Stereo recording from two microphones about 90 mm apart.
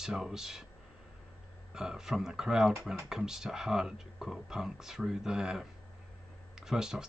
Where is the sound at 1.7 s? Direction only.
5° right (ahead or behind).